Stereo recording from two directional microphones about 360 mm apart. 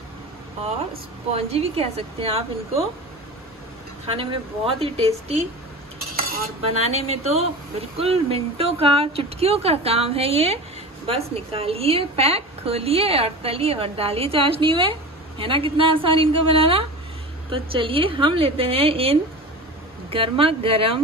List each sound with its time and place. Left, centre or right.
1.3 s a woman's voice: centre
4.1 s a woman's voice: centre
7.1 s a woman's voice: centre